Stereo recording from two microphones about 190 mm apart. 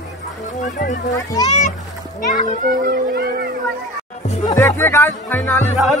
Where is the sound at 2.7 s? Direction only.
50° right (ahead or behind).